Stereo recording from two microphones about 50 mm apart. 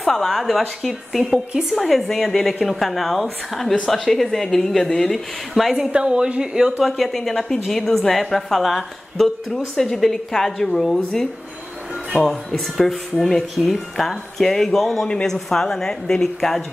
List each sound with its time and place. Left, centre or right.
0.0 s speech: centre
1.5 s a woman's voice: centre
1.8 s speech: centre
5.9 s speech: right
6.8 s speech: centre
12.1 s a woman's voice: centre